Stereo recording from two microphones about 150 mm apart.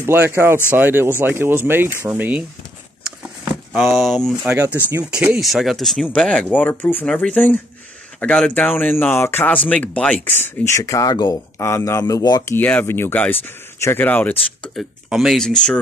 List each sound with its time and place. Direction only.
0.0 s speech: 15° right (ahead or behind)
3.7 s speech: centre (ahead or behind)
4.6 s speech: 15° right (ahead or behind); by 14.3 s 10° left (ahead or behind)
14.6 s speech: centre (ahead or behind)